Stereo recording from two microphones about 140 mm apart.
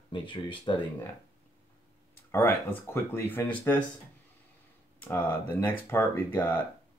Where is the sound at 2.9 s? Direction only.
15° left (ahead or behind).